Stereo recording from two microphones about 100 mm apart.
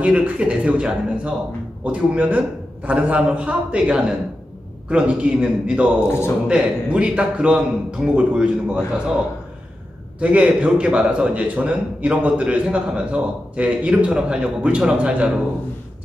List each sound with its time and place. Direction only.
0.0 s a man's voice: 10° right (ahead or behind)
6.0 s a man's voice: 25° left (ahead or behind)
6.4 s a man's voice: 10° right (ahead or behind)
10.2 s a man's voice: 15° right (ahead or behind)